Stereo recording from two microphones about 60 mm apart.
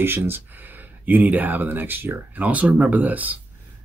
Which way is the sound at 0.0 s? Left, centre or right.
Right.